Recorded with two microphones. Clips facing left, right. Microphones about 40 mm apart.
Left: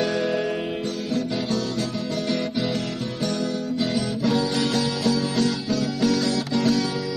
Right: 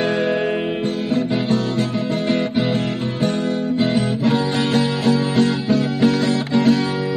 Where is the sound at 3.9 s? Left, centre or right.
Right.